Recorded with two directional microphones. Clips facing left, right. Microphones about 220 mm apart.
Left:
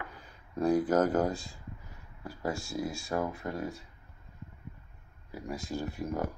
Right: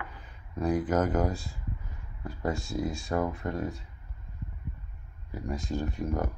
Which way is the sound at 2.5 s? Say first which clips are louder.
Right 3 dB; 20° right (ahead or behind).